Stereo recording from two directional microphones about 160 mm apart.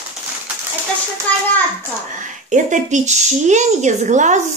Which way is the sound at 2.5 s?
50° right (ahead or behind).